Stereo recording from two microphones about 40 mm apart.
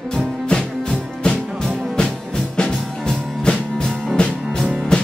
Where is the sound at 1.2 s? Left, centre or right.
Centre.